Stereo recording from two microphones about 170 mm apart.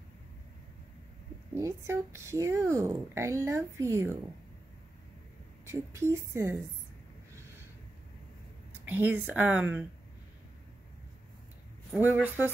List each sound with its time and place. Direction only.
1.5 s speech: 15° right (ahead or behind)
5.7 s speech: 15° right (ahead or behind)
8.8 s speech: 10° right (ahead or behind)
12.0 s speech: 10° right (ahead or behind)